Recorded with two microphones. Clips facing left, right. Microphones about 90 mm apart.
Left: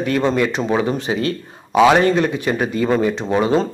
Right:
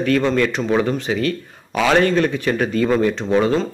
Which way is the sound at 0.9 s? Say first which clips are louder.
Even; 25° left (ahead or behind).